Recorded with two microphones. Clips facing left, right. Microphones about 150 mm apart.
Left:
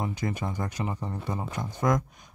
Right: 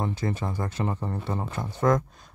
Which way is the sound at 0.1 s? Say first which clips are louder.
Right 2 dB; 15° left (ahead or behind).